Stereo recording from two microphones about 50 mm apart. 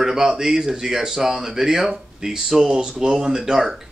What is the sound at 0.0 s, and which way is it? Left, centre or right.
Speech, centre.